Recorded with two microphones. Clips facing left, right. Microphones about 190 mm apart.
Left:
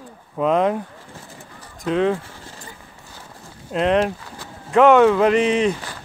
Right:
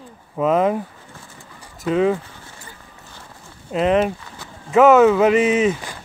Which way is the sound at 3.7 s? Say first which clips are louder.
Right 1 dB; centre (ahead or behind).